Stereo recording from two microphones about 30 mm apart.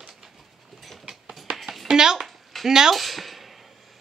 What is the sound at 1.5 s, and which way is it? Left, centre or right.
Music, right.